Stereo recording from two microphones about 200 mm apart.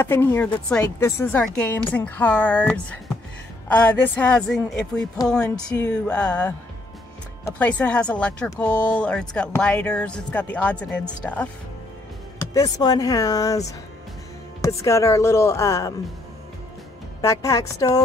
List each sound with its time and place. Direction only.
0.0 s a woman's voice: 10° left (ahead or behind)
12.4 s a woman's voice: 15° left (ahead or behind)
17.2 s a woman's voice: 15° left (ahead or behind)